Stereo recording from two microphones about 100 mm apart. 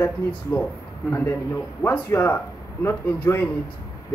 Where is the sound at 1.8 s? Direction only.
20° left (ahead or behind).